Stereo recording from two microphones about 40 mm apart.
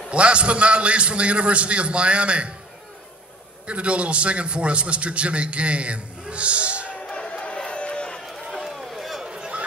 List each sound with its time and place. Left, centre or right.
0.1 s a man's voice: right
3.6 s a man's voice: right
7.0 s crowd: left
8.5 s run: centre
8.7 s a sound: centre
9.2 s a sound: right